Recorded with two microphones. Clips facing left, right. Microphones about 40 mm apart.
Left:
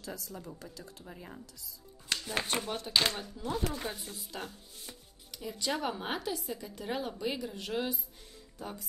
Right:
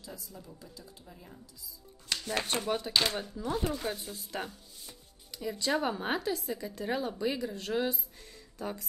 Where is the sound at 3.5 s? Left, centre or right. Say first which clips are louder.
Right 2 dB; right.